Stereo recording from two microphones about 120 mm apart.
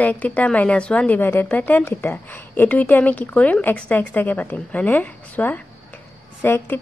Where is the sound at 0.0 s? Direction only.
15° left (ahead or behind).